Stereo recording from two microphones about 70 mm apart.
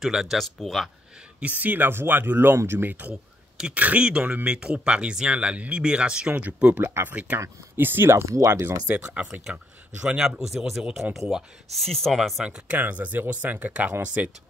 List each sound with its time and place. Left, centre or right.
0.0 s speech: centre
1.4 s speech: right
3.5 s speech: centre
4.5 s speech: centre
6.8 s speech: right
8.8 s speech: centre
12.4 s speech: centre